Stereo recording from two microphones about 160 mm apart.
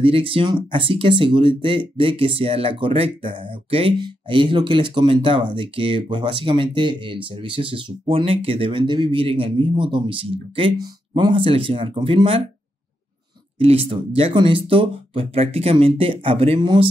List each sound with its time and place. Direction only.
0.0 s speech: 35° right (ahead or behind)
13.6 s speech: 35° right (ahead or behind)